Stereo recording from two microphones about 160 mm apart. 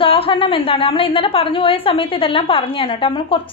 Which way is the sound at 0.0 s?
35° left (ahead or behind).